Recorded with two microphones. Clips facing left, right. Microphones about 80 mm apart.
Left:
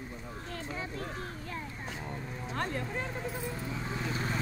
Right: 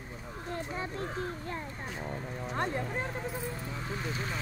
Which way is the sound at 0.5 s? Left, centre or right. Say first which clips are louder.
Right 2 dB; right.